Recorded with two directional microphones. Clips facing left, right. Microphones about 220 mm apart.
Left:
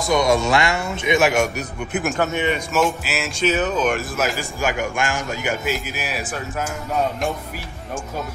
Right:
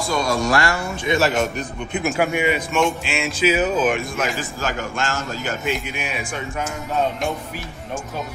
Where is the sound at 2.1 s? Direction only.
10° right (ahead or behind).